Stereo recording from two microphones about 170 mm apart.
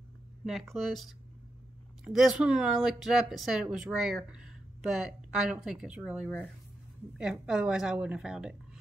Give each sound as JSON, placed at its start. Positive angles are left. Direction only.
{"t": 0.5, "sound": "speech", "side_deg": 0}